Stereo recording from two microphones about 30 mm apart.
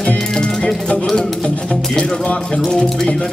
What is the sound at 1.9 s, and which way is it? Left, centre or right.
Music, left.